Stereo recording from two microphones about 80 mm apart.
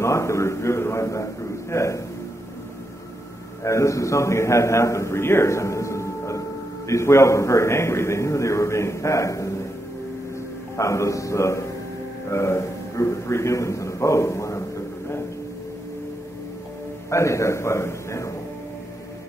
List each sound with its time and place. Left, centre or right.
0.0 s a man's voice: left
3.6 s a man's voice: left
10.8 s a man's voice: left
17.1 s a man's voice: left